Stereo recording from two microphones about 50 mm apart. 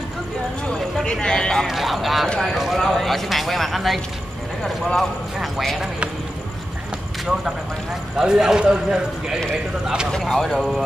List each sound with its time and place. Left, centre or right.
0.7 s speech: centre
1.7 s a man's voice: centre
2.2 s speech: centre
2.5 s a man's voice: centre
5.4 s a man's voice: centre
8.2 s a man's voice: centre
10.1 s a man's voice: centre